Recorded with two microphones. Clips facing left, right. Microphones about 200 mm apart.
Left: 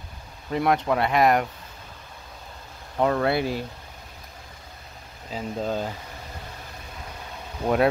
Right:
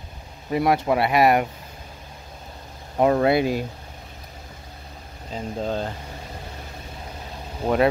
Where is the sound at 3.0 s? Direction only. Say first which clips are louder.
Right 4 dB; 20° right (ahead or behind).